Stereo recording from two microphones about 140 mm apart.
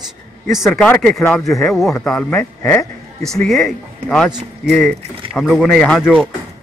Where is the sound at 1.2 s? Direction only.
10° left (ahead or behind).